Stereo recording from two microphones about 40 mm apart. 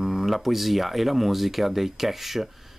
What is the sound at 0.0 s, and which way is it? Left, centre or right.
Speech, centre.